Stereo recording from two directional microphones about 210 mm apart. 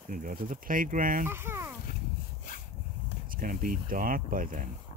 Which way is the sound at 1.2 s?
10° right (ahead or behind).